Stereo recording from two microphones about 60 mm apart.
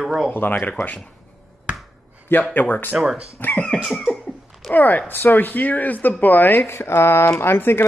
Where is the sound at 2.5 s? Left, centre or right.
Left.